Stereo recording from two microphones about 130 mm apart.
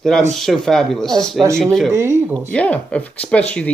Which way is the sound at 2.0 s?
20° right (ahead or behind).